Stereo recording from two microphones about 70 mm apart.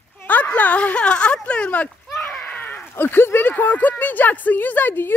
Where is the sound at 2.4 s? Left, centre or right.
Left.